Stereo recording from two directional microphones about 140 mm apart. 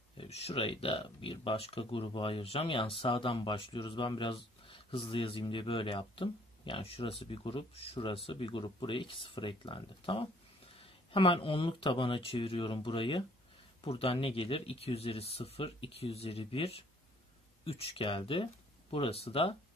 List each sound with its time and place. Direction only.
0.2 s speech: 45° left (ahead or behind)